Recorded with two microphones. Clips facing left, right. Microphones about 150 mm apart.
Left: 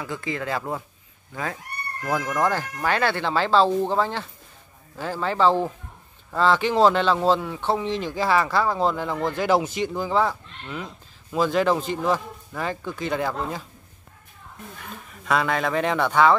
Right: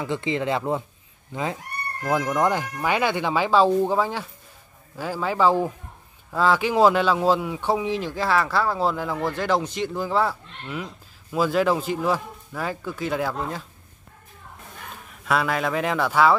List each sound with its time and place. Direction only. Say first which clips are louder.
0.0 s speech: right 4 dB; 25° right (ahead or behind); by 13.7 s centre (ahead or behind)
15.2 s speech: even; 5° right (ahead or behind)